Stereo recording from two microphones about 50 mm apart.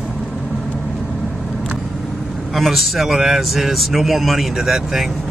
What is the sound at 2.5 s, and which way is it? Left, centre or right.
Speech, centre.